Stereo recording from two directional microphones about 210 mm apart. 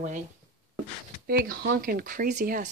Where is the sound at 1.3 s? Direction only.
45° right (ahead or behind).